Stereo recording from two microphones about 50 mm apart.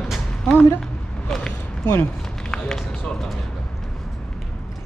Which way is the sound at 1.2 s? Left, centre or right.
Centre.